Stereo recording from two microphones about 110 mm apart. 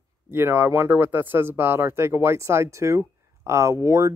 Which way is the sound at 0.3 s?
20° right (ahead or behind).